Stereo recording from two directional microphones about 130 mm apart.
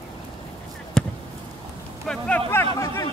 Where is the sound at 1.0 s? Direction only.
5° left (ahead or behind).